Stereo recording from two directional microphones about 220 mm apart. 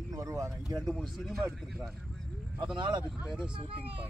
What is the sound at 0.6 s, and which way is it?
Speech, centre (ahead or behind).